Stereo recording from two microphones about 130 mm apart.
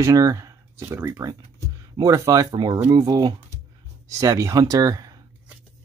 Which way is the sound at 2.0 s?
25° right (ahead or behind).